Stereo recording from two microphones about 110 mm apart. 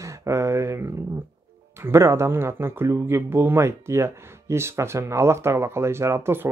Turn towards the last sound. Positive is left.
turn(degrees=-20)  # may be behind; listen again after turning